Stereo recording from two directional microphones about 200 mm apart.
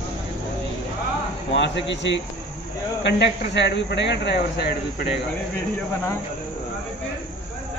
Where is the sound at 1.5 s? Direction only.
60° left (ahead or behind).